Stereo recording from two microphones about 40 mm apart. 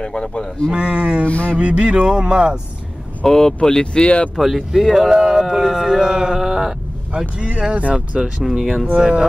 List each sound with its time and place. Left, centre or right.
0.0 s speech: centre
0.7 s speech: right
1.2 s speech: left
1.6 s speech: right
3.3 s speech: centre
3.8 s speech: left
4.4 s speech: centre
7.3 s speech: right
8.1 s speech: centre